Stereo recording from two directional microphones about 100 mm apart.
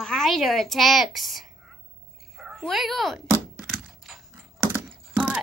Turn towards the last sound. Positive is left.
turn(degrees=-15)  # may be behind; listen again after turning